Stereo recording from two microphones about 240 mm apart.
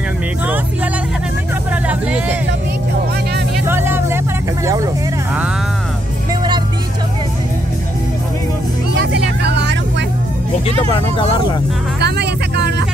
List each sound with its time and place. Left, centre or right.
1.9 s music: centre
3.6 s music: centre
8.9 s vehicle: right
12.0 s vehicle: right